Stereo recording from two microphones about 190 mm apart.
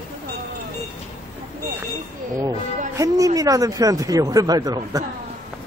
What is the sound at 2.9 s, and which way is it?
Speech, 15° right (ahead or behind).